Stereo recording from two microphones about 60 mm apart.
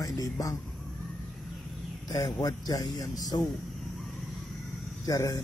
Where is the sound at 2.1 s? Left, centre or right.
Left.